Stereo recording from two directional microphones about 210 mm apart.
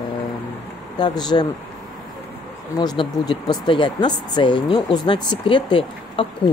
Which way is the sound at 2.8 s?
20° left (ahead or behind).